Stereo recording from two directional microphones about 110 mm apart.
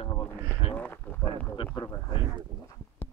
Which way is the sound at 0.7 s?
15° left (ahead or behind).